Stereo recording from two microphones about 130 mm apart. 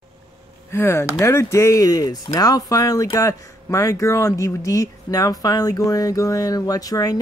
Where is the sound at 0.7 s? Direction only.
20° left (ahead or behind).